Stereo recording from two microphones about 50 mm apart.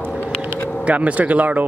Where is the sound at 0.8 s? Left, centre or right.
Right.